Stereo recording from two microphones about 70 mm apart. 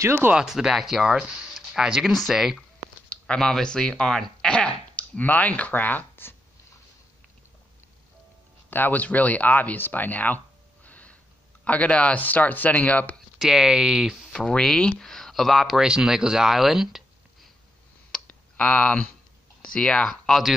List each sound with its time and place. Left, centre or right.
0.0 s speech: right
0.3 s speech: centre
1.5 s a sound: centre
2.1 s speech: centre
3.1 s speech: centre
4.9 s speech: left
8.6 s speech: left
13.4 s speech: centre
14.3 s speech: centre
15.8 s speech: centre
18.2 s clicking: left
19.6 s speech: centre